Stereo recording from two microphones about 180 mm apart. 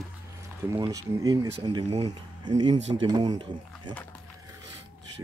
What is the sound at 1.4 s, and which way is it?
Speech, 30° right (ahead or behind).